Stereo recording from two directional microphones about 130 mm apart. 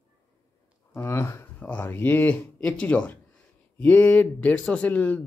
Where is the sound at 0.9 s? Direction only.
20° left (ahead or behind).